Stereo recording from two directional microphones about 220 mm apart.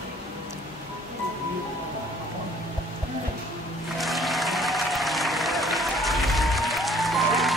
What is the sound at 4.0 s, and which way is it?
Applause, centre (ahead or behind).